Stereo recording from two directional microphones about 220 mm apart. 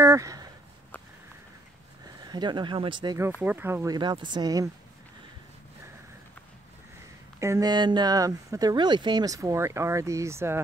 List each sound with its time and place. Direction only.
0.0 s a sound: 15° right (ahead or behind)
2.2 s speech: 20° right (ahead or behind)
3.3 s speech: 10° right (ahead or behind)
7.3 s speech: 15° right (ahead or behind)